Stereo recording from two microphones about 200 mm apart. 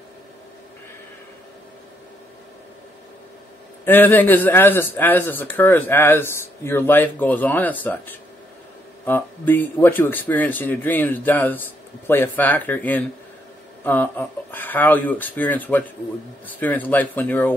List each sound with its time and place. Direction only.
3.8 s speech: 10° left (ahead or behind)
9.0 s speech: 10° left (ahead or behind)